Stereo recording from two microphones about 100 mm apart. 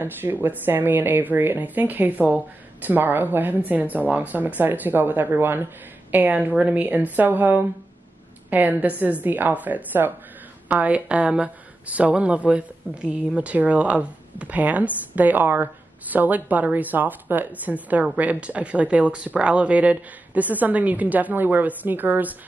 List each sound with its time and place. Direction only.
0.0 s a woman's voice: 20° right (ahead or behind)